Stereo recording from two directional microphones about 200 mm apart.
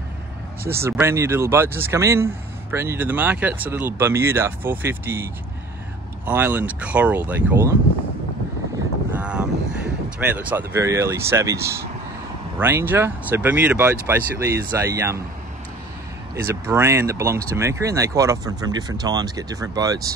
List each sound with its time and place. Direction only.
0.7 s speech: 10° right (ahead or behind)
9.2 s vehicle: 5° right (ahead or behind)
10.0 s speech: 5° right (ahead or behind)
16.3 s speech: 15° right (ahead or behind)